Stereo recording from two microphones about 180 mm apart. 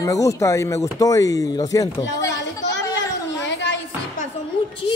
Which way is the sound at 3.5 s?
75° left (ahead or behind).